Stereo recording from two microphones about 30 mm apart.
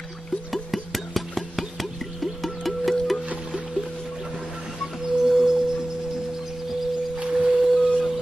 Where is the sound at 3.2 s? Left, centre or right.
Right.